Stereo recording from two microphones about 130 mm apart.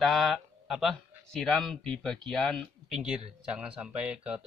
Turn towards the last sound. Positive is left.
turn(degrees=-5)  # may be behind; listen again after turning